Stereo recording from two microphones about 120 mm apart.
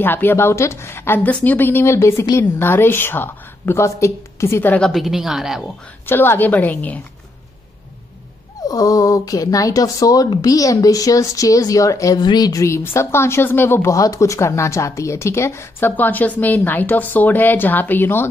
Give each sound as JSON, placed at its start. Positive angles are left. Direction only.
{"t": 0.0, "sound": "speech", "side_deg": 15}
{"t": 4.8, "sound": "a woman's voice", "side_deg": 0}
{"t": 6.0, "sound": "a woman's voice", "side_deg": 20}
{"t": 8.6, "sound": "speech", "side_deg": 30}